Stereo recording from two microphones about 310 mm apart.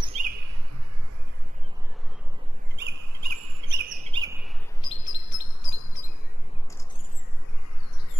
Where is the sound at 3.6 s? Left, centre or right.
Right; by 4.5 s centre.